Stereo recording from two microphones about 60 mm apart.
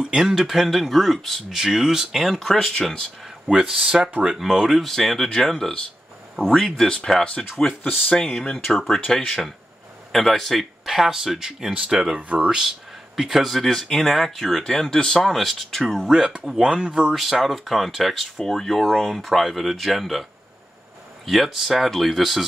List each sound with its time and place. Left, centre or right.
0.1 s speech: centre
1.5 s speech: centre
2.2 s speech: centre
3.5 s speech: centre
4.7 s speech: centre
7.8 s speech: centre
8.6 s speech: centre
12.2 s speech: right
12.4 s speech: centre
17.1 s speech: centre
21.3 s speech: centre